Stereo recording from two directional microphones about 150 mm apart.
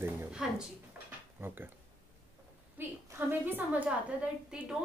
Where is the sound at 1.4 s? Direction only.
15° right (ahead or behind).